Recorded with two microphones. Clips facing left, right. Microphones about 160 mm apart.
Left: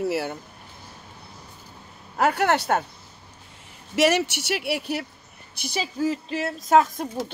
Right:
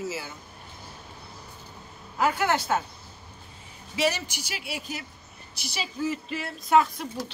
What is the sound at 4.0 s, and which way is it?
Speech, 75° left (ahead or behind).